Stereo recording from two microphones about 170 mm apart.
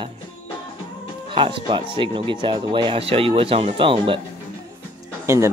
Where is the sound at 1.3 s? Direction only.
30° right (ahead or behind).